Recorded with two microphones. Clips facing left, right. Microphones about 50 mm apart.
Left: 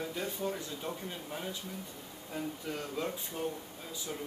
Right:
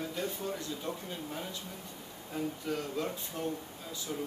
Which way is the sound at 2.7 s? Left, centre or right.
Centre.